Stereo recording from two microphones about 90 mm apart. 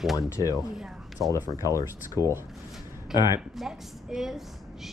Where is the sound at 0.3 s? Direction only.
35° left (ahead or behind).